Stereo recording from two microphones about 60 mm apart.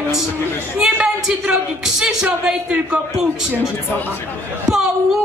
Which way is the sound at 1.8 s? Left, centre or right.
Centre.